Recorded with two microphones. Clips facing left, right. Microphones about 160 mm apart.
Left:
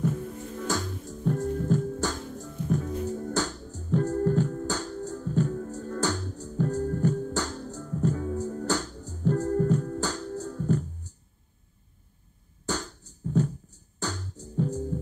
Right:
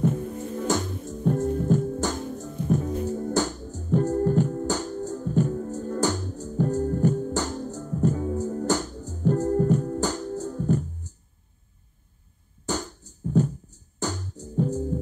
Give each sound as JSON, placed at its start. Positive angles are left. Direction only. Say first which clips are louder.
{"t": 0.0, "sound": "music", "louder": "right 4 dB", "side_deg": -30}
{"t": 12.6, "sound": "beatboxing", "louder": "right 2 dB", "side_deg": -15}